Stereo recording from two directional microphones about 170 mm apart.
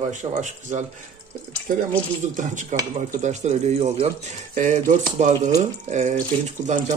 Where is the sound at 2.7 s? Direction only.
45° right (ahead or behind).